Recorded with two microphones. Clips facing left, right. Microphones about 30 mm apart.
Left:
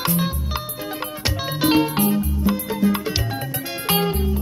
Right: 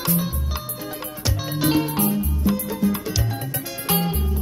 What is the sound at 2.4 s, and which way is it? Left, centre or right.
Music, left.